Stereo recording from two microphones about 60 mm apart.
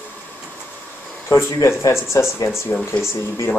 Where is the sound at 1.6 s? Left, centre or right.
Left.